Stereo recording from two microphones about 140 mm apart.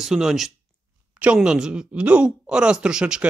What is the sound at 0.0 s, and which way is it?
Speech, 5° right (ahead or behind).